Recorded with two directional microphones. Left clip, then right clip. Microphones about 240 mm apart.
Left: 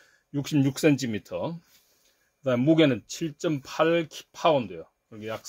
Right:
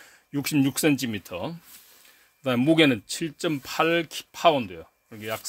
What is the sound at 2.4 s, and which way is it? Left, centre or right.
Speech, right.